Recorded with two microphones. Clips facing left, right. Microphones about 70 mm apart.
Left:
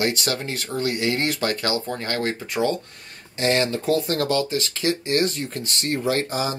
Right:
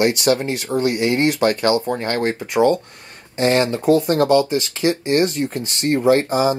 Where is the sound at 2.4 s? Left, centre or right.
Centre.